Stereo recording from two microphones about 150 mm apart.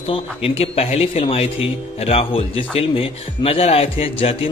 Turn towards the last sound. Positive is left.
turn(degrees=40)  # may be behind; listen again after turning